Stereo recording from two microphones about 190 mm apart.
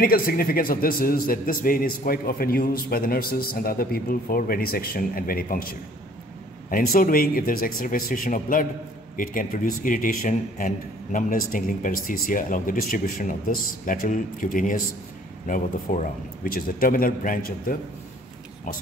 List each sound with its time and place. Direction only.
0.0 s a man's voice: 50° left (ahead or behind)